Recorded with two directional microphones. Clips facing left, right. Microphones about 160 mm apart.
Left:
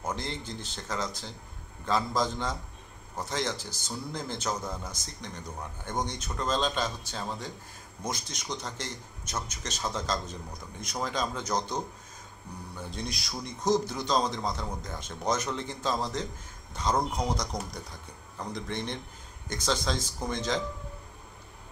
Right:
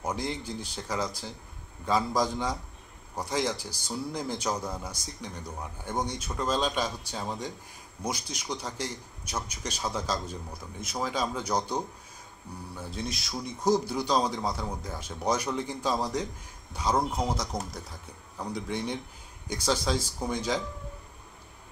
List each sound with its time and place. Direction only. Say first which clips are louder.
0.0 s a man's voice: right 2 dB; 10° right (ahead or behind)